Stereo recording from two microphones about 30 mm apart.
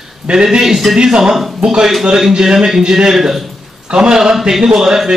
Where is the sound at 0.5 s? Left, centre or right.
Centre.